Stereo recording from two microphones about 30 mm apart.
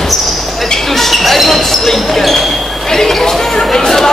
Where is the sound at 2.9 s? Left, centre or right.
Centre.